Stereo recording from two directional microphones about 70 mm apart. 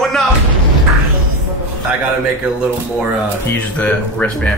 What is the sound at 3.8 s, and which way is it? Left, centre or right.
Speech, centre.